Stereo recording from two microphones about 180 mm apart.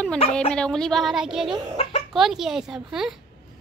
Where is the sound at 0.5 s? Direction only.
5° left (ahead or behind).